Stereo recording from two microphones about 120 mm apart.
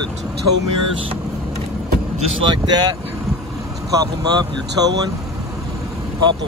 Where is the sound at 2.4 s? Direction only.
40° right (ahead or behind).